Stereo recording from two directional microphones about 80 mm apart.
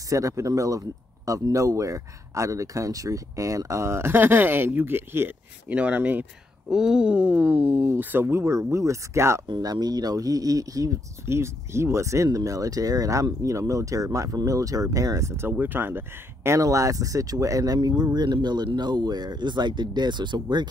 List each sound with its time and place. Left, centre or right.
0.1 s speech: right
6.7 s speech: centre; by 9.4 s right
9.5 s speech: right
11.2 s speech: right
16.5 s speech: right
17.8 s speech: right